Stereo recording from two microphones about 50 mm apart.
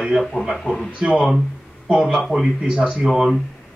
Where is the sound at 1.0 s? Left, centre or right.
Centre.